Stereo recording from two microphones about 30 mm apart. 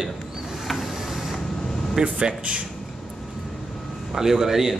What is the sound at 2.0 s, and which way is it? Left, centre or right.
Speech, right.